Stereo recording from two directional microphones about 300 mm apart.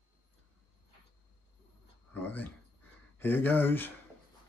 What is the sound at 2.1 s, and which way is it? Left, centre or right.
Speech, centre.